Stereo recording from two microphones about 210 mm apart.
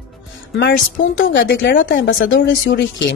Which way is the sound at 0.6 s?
50° left (ahead or behind).